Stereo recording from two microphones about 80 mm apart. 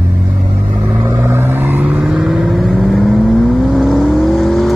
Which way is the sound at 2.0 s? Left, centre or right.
Centre.